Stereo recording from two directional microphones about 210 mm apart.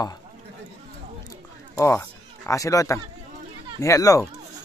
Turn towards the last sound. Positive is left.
turn(degrees=15)  # may be behind; listen again after turning